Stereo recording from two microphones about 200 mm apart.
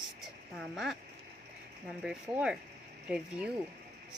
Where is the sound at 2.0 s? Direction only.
5° right (ahead or behind).